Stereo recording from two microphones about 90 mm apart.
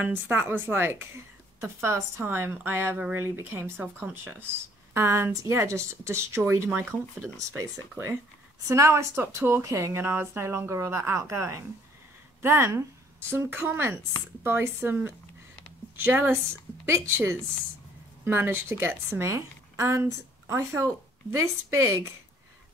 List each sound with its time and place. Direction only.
0.0 s a woman's voice: 25° right (ahead or behind)
1.6 s a woman's voice: 30° right (ahead or behind)
7.3 s a woman's voice: 35° right (ahead or behind)